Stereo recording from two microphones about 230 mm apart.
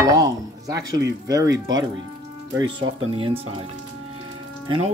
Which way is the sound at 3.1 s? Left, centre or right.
Right.